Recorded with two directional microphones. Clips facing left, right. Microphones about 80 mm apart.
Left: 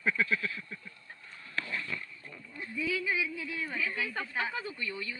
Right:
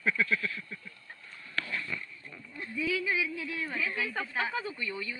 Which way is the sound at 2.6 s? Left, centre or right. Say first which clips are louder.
Right 1 dB; centre.